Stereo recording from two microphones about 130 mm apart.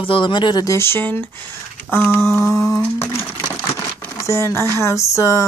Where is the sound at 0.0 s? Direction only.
40° left (ahead or behind).